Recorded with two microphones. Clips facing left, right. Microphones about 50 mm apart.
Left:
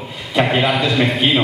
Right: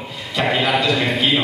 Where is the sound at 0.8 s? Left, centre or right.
Left.